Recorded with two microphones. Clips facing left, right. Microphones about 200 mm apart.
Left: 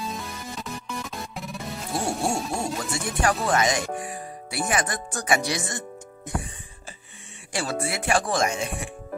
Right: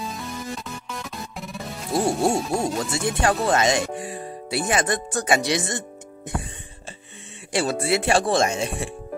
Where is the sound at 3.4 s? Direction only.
25° right (ahead or behind).